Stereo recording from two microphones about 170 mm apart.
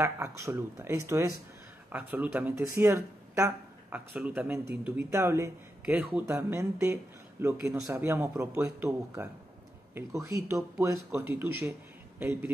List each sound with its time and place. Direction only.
0.0 s speech: 15° right (ahead or behind)